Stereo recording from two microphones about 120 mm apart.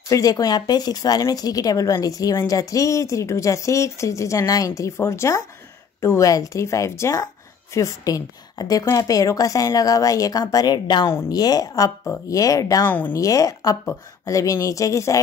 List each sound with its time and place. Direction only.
0.1 s speech: 30° left (ahead or behind)
12.8 s a woman's voice: 15° left (ahead or behind)
13.2 s speech: 30° left (ahead or behind)